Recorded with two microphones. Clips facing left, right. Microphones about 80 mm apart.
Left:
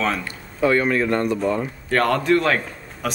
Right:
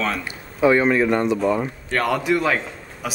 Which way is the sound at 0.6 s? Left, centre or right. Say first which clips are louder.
Right 2 dB; centre.